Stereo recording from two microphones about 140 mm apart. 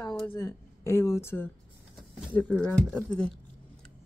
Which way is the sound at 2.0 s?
10° left (ahead or behind).